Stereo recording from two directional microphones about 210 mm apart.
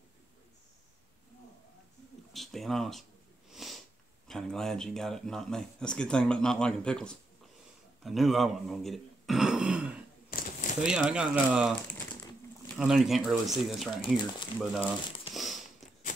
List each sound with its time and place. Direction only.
2.3 s speech: centre (ahead or behind)
3.5 s sniff: centre (ahead or behind)
4.3 s speech: 5° left (ahead or behind)
8.0 s a sound: centre (ahead or behind)
10.3 s shuffling cards: 40° left (ahead or behind)
10.8 s speech: 5° right (ahead or behind)
15.3 s a sound: centre (ahead or behind)